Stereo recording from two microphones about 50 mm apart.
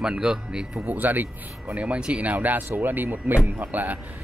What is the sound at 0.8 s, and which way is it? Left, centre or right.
Speech, right.